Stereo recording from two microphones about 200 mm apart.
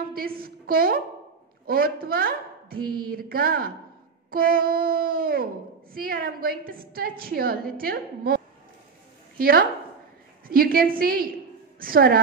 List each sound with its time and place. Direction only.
0.4 s a sound: 45° right (ahead or behind)
1.7 s a woman's voice: 45° right (ahead or behind)
9.4 s a woman's voice: 45° right (ahead or behind)